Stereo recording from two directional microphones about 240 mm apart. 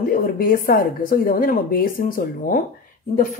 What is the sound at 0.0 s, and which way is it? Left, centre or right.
Speech, left.